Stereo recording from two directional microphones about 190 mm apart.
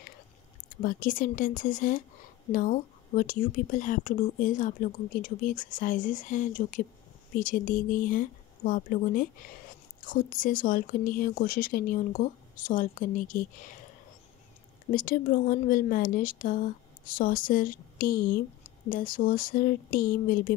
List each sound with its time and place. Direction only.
0.8 s speech: 45° left (ahead or behind)
14.9 s speech: 45° left (ahead or behind)